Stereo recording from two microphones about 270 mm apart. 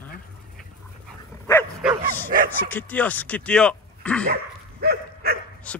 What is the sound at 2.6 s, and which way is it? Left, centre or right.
Speech, centre.